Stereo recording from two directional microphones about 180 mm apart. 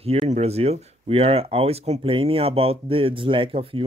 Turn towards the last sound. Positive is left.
turn(degrees=-30)  # may be behind; listen again after turning